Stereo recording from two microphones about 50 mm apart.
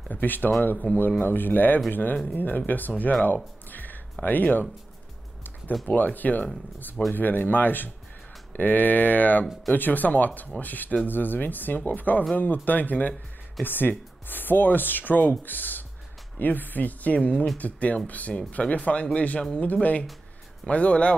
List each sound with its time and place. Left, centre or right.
0.1 s speech: left
3.7 s a sound: left
5.9 s speech: left